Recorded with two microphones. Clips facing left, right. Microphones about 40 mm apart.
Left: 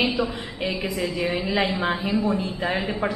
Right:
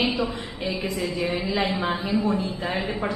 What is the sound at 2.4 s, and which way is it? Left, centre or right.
Speech, centre.